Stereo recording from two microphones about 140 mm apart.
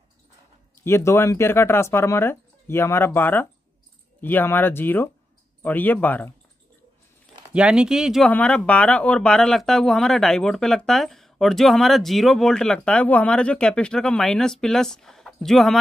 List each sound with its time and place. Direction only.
0.7 s speech: 20° left (ahead or behind)
7.5 s speech: 5° right (ahead or behind)
8.3 s speech: 10° left (ahead or behind)